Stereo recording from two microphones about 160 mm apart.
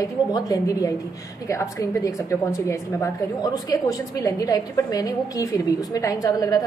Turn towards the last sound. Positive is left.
turn(degrees=20)  # may be behind; listen again after turning